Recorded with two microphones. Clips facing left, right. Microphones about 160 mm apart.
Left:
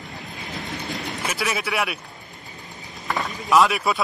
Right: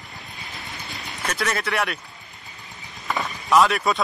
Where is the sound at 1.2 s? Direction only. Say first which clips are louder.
Right 2 dB; 5° left (ahead or behind).